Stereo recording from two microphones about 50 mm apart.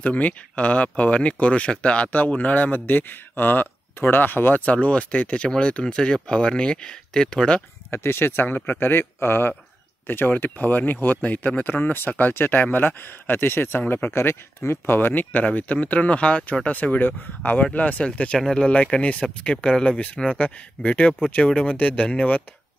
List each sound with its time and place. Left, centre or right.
0.0 s speech: left
4.6 s speech: left
7.9 s speech: left
15.5 s speech: left
20.3 s speech: left